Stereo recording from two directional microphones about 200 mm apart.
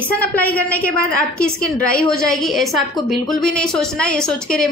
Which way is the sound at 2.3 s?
Centre (ahead or behind).